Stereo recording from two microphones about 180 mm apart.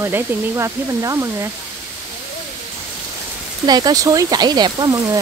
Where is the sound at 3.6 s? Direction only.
20° right (ahead or behind).